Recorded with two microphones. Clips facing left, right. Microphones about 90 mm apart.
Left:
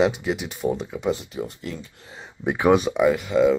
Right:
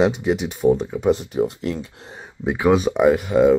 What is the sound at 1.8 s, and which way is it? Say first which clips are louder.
Speech: right 6 dB; 65° right (ahead or behind).